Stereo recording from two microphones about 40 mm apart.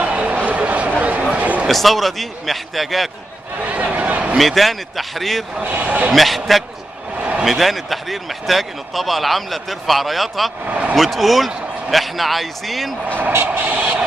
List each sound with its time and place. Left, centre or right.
0.0 s a sound: right
1.7 s speech: centre
3.6 s a sound: right
4.4 s speech: centre
5.6 s a man's voice: right
6.1 s speech: centre
7.2 s a sound: right
7.4 s speech: centre
10.6 s speech: right
11.0 s speech: centre
13.6 s vehicle: right